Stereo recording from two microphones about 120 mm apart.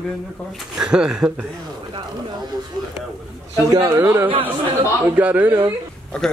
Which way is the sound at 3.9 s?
25° right (ahead or behind).